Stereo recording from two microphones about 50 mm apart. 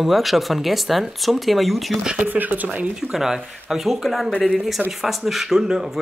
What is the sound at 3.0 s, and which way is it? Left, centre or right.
Speech, centre.